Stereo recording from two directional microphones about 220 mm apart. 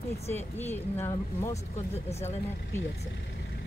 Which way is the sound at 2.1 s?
30° left (ahead or behind).